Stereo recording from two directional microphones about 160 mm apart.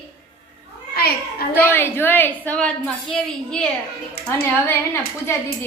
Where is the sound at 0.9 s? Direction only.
75° left (ahead or behind).